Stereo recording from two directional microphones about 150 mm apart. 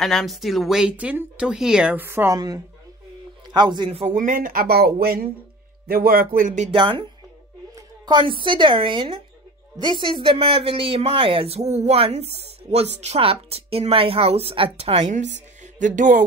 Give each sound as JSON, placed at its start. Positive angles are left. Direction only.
{"t": 0.0, "sound": "a man's voice", "side_deg": 0}
{"t": 4.0, "sound": "speech", "side_deg": -55}
{"t": 6.7, "sound": "speech", "side_deg": -35}